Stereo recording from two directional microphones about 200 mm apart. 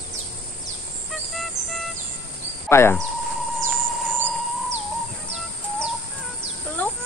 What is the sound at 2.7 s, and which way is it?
Speech, 10° left (ahead or behind).